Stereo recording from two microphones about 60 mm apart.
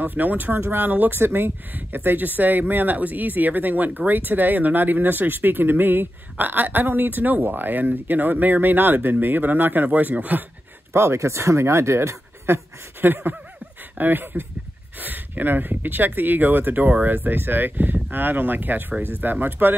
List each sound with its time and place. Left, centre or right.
0.0 s speech: right
10.9 s speech: right
13.0 s speech: right